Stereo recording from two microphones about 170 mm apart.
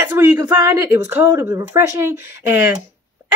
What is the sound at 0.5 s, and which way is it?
Speech, 15° right (ahead or behind).